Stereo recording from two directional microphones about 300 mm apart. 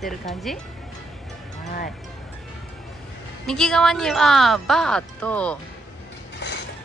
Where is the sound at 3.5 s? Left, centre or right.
Centre.